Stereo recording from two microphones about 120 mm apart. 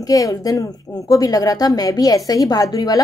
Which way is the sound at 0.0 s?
30° left (ahead or behind).